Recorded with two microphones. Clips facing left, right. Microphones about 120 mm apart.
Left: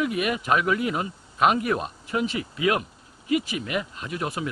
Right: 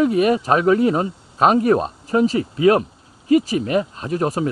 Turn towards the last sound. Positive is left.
turn(degrees=-40)  # may be behind; listen again after turning